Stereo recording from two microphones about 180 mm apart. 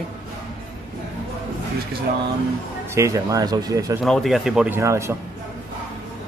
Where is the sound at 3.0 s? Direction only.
15° right (ahead or behind).